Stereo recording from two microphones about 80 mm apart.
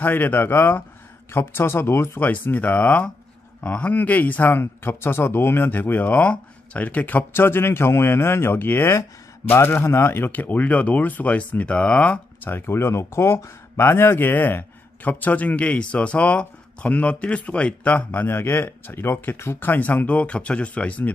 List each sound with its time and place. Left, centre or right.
0.0 s speech: left